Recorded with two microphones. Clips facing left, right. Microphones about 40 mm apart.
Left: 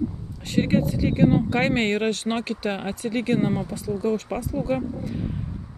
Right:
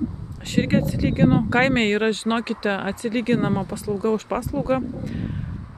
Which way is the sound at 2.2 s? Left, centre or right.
Right.